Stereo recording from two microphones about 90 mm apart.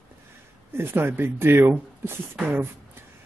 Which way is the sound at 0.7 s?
25° right (ahead or behind).